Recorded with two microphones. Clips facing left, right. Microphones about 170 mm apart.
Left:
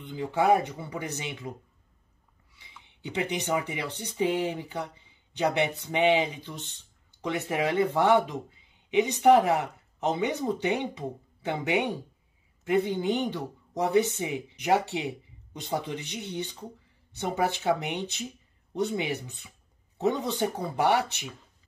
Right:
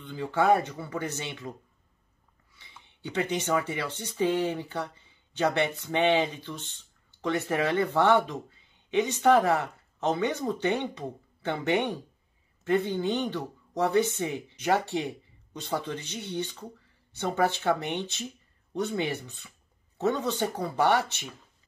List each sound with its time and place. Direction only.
0.1 s speech: 15° left (ahead or behind)
2.8 s speech: 15° left (ahead or behind)